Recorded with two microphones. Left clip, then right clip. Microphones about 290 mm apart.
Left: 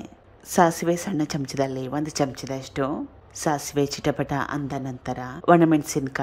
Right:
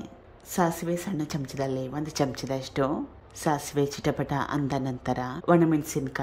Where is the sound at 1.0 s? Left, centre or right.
Centre.